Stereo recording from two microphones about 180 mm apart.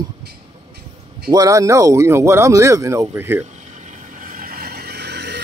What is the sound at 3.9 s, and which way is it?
Vehicle, 50° right (ahead or behind).